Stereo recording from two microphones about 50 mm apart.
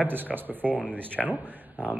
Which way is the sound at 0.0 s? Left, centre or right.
Right.